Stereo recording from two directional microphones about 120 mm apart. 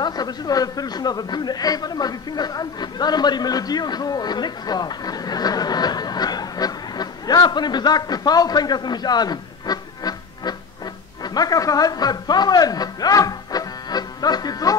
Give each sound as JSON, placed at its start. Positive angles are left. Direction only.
{"t": 0.0, "sound": "speech", "side_deg": 35}